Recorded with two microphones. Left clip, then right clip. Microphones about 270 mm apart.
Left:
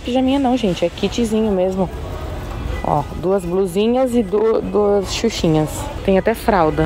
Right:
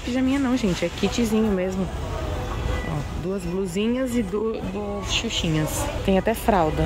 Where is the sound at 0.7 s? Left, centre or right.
Centre.